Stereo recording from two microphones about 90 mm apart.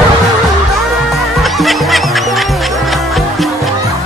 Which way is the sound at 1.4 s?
Centre (ahead or behind).